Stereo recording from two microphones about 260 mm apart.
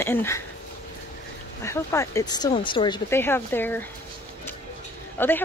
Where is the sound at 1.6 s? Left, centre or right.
Centre.